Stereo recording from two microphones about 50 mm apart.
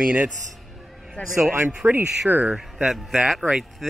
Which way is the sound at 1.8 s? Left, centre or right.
Right.